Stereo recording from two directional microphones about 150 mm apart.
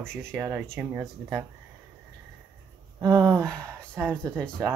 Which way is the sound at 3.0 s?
20° right (ahead or behind).